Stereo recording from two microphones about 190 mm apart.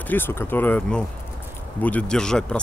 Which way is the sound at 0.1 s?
10° left (ahead or behind).